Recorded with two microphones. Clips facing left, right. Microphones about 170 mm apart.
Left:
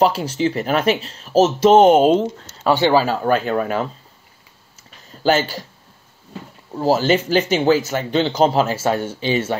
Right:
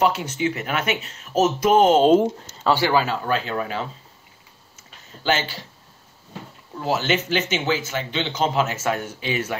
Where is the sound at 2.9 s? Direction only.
35° left (ahead or behind).